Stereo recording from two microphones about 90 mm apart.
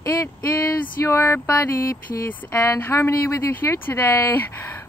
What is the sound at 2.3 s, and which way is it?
Speech, 25° left (ahead or behind).